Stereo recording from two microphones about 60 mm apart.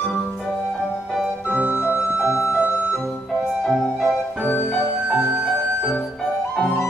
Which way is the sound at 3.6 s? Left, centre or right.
Centre.